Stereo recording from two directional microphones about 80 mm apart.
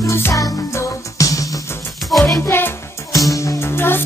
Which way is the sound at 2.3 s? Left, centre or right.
Left.